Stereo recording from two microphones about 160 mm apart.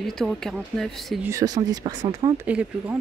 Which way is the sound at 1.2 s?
20° right (ahead or behind).